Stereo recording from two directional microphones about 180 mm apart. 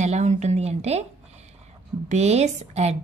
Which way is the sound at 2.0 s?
40° right (ahead or behind).